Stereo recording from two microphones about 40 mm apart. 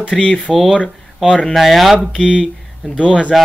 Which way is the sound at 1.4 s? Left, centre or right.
Centre.